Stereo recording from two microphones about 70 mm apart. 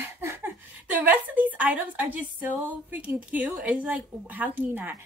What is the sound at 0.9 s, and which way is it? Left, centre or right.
A woman's voice, right.